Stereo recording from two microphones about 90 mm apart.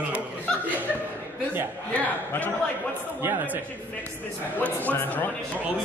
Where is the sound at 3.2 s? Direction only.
20° right (ahead or behind).